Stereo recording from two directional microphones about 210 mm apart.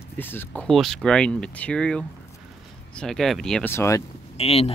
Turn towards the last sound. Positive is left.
turn(degrees=30)  # may be behind; listen again after turning